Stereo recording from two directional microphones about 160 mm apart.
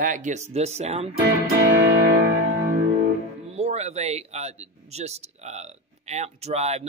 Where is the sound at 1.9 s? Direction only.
90° right.